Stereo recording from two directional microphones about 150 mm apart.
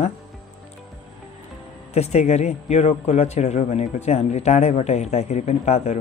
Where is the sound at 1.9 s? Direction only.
45° left (ahead or behind).